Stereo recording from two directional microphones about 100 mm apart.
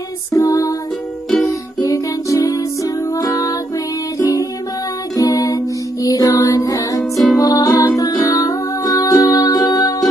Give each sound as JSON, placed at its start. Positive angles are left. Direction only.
{"t": 0.3, "sound": "music", "side_deg": 35}
{"t": 1.8, "sound": "music", "side_deg": 35}